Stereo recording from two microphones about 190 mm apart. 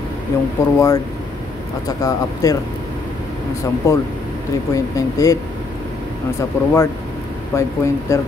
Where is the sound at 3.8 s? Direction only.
15° left (ahead or behind).